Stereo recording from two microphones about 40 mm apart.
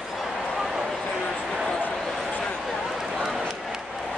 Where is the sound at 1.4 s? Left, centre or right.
Centre.